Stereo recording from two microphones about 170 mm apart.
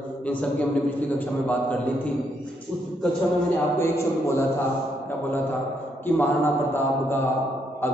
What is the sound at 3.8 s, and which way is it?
Speech, 15° left (ahead or behind).